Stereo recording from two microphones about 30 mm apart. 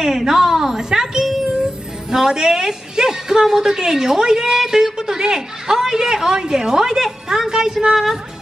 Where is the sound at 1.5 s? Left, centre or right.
Right.